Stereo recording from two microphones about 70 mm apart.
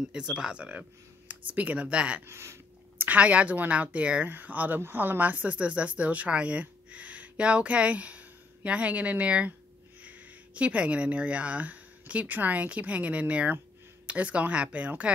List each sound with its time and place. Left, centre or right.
0.1 s speech: centre
2.2 s speech: right
3.0 s a woman's voice: centre